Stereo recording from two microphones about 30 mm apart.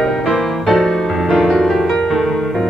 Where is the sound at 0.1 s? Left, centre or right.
Centre.